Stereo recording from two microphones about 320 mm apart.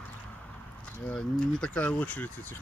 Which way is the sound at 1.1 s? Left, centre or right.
Centre.